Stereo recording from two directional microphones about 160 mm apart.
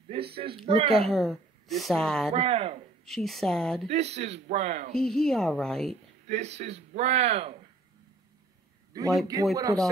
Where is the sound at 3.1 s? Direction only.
Centre (ahead or behind).